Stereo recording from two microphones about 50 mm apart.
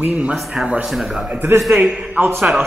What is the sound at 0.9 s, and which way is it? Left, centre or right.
Speech, centre.